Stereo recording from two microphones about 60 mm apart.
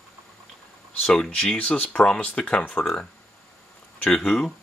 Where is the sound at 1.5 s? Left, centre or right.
Left.